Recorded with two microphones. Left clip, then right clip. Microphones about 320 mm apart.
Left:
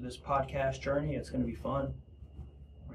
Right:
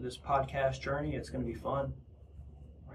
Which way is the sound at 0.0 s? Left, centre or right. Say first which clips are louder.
Right 1 dB; centre.